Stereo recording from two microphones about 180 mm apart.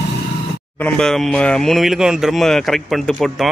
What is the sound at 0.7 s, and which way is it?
Speech, 5° left (ahead or behind).